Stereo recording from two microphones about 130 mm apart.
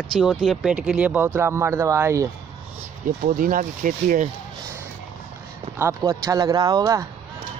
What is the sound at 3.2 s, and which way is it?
Speech, 90° right.